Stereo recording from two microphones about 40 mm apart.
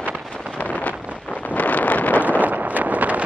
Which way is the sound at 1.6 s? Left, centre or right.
Left.